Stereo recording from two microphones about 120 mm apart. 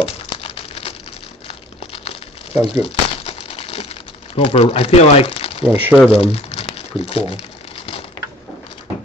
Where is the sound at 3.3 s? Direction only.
55° left (ahead or behind).